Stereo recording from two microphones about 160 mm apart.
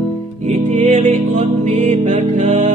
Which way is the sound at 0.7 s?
50° right (ahead or behind).